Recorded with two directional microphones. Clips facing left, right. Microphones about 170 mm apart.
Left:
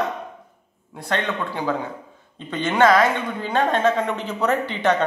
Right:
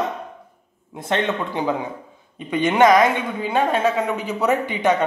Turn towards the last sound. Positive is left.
turn(degrees=-10)  # may be behind; listen again after turning